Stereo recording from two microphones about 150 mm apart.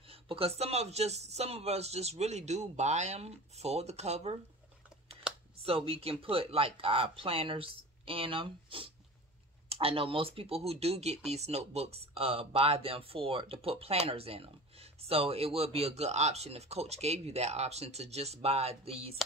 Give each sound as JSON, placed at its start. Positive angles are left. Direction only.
{"t": 0.1, "sound": "speech", "side_deg": -40}
{"t": 5.6, "sound": "speech", "side_deg": -40}